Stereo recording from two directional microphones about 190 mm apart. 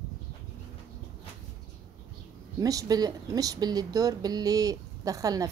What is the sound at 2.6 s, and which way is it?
Speech, 20° right (ahead or behind).